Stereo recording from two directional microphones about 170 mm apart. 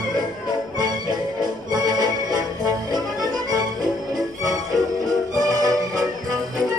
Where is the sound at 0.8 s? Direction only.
25° right (ahead or behind).